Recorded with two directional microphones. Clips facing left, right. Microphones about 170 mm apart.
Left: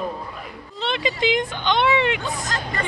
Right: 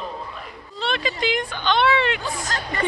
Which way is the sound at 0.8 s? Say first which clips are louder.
Left 1 dB; 20° left (ahead or behind).